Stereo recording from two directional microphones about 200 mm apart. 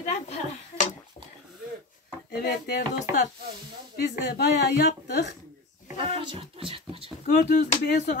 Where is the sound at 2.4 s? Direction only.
50° left (ahead or behind).